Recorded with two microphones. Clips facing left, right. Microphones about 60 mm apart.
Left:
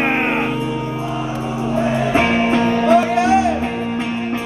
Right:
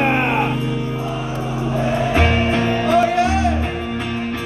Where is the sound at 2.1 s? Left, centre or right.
Left.